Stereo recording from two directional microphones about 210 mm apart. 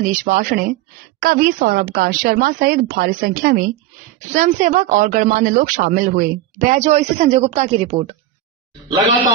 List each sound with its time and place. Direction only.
0.1 s a woman's voice: 45° right (ahead or behind)